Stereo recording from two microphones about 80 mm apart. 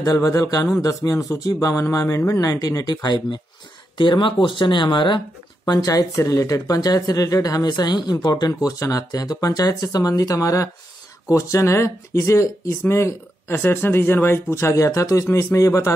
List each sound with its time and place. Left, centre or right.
0.0 s speech: left
4.0 s speech: left
5.9 s speech: left